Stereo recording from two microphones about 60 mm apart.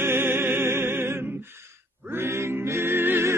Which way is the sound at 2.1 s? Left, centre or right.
Right.